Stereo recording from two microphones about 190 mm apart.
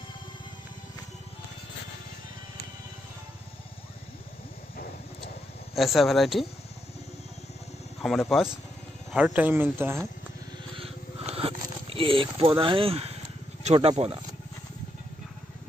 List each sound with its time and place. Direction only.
5.8 s speech: centre (ahead or behind)
8.0 s speech: centre (ahead or behind)
10.8 s a sound: 30° right (ahead or behind)
13.7 s speech: 30° right (ahead or behind)